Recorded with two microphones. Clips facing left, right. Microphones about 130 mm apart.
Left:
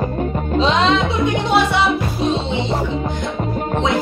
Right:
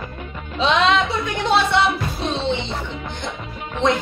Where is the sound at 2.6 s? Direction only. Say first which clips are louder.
Left 8 dB; 40° left (ahead or behind).